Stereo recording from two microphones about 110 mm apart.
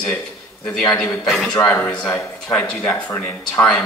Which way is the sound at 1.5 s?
15° left (ahead or behind).